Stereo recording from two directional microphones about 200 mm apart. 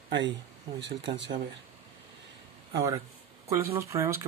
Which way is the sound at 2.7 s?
15° right (ahead or behind).